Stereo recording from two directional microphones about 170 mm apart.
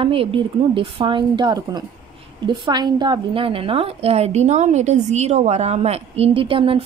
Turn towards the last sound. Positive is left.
turn(degrees=-30)  # may be behind; listen again after turning